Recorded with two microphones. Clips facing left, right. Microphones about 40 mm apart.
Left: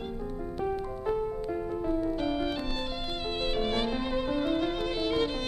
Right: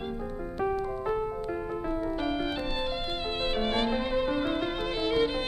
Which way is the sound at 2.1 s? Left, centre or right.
Centre.